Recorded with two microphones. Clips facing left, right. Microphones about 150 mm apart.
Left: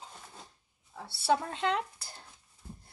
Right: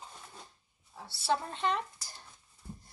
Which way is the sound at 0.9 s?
65° left (ahead or behind).